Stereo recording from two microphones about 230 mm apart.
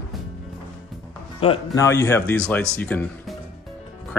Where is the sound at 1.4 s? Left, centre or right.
Left.